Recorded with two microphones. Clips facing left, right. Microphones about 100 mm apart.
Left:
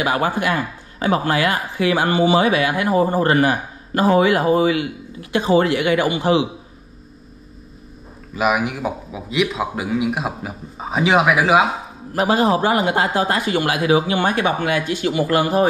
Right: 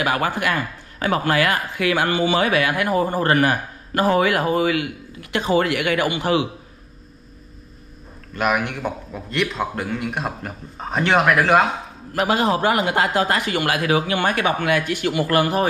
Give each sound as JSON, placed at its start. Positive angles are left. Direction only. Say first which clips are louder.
{"t": 0.0, "sound": "speech", "louder": "left 2 dB", "side_deg": 25}
{"t": 8.3, "sound": "a man's voice", "louder": "left 2 dB", "side_deg": 5}
{"t": 12.1, "sound": "a man's voice", "louder": "left 3 dB", "side_deg": 30}